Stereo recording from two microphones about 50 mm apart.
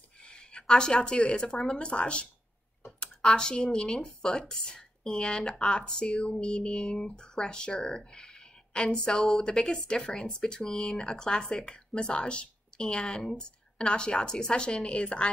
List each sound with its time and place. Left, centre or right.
0.2 s speech: centre